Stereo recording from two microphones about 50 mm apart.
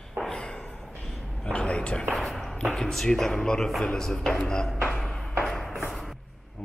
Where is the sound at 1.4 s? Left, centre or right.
Left.